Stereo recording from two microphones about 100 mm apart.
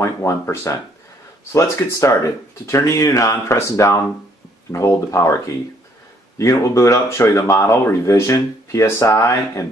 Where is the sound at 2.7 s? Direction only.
30° left (ahead or behind).